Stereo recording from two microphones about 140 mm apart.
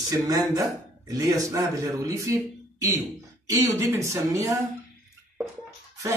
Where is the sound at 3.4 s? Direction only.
20° right (ahead or behind).